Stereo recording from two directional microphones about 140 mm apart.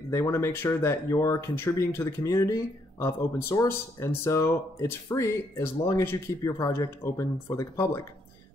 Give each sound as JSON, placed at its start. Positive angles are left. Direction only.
{"t": 0.1, "sound": "speech", "side_deg": 20}